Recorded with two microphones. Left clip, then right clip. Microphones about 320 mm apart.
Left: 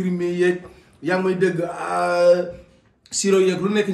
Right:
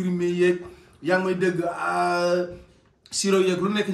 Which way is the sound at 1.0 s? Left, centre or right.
Centre.